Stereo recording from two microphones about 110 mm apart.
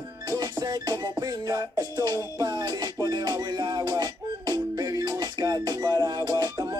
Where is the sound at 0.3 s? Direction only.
40° right (ahead or behind).